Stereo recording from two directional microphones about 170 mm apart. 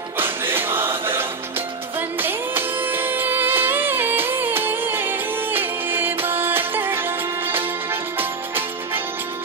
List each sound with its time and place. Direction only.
0.2 s music: 10° right (ahead or behind)